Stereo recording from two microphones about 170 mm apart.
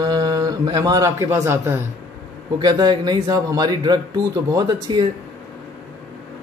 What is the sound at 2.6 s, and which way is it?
Speech, 25° right (ahead or behind).